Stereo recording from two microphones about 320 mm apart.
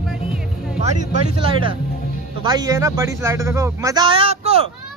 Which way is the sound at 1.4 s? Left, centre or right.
Centre.